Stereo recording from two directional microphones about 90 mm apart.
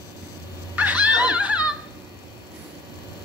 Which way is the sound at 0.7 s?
15° right (ahead or behind).